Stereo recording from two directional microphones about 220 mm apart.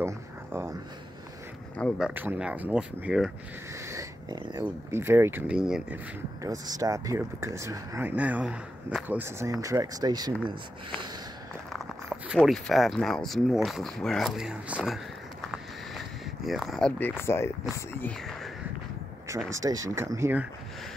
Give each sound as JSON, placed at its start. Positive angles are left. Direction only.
{"t": 0.0, "sound": "a sound", "side_deg": -10}
{"t": 1.8, "sound": "speech", "side_deg": 0}
{"t": 3.9, "sound": "dog", "side_deg": -15}
{"t": 4.9, "sound": "speech", "side_deg": -10}
{"t": 6.6, "sound": "speech", "side_deg": -15}
{"t": 11.7, "sound": "a sound", "side_deg": -5}
{"t": 12.4, "sound": "speech", "side_deg": 0}
{"t": 15.4, "sound": "a sound", "side_deg": 0}
{"t": 16.4, "sound": "speech", "side_deg": 0}
{"t": 19.5, "sound": "speech", "side_deg": -15}